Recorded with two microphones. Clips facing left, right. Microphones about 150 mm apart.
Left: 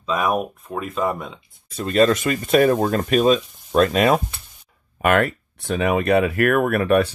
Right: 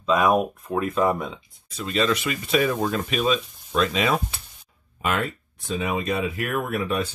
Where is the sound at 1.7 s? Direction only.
50° left (ahead or behind).